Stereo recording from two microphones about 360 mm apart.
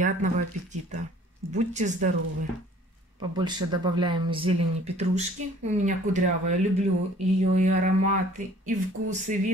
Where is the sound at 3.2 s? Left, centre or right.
Centre.